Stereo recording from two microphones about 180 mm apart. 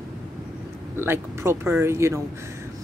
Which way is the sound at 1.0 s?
15° right (ahead or behind).